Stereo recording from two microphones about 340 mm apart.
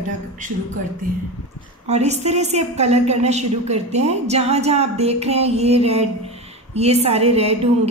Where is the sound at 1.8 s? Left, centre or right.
Centre.